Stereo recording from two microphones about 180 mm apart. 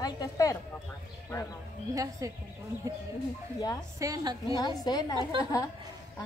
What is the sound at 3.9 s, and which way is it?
Speech, 20° right (ahead or behind).